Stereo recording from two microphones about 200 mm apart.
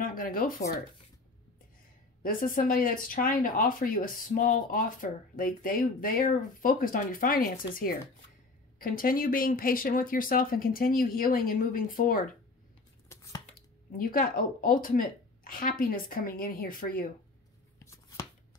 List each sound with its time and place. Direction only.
0.0 s speech: 45° left (ahead or behind)
2.2 s speech: 45° left (ahead or behind)
13.1 s chopping: 15° left (ahead or behind)
13.9 s speech: 45° left (ahead or behind)
17.7 s shuffling cards: 15° left (ahead or behind)